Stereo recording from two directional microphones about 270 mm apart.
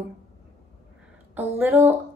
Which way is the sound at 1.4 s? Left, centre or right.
Centre.